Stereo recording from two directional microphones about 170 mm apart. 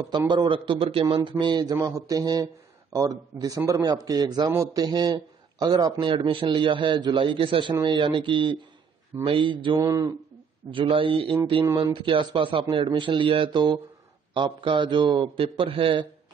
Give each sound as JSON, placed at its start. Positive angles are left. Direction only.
{"t": 0.1, "sound": "a man's voice", "side_deg": -25}
{"t": 9.8, "sound": "a man's voice", "side_deg": -20}
{"t": 10.7, "sound": "a man's voice", "side_deg": -30}